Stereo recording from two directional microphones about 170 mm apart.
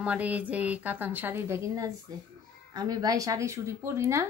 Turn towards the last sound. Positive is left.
turn(degrees=-15)  # may be behind; listen again after turning